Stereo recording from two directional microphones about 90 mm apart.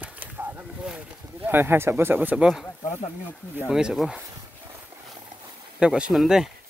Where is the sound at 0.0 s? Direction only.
20° right (ahead or behind).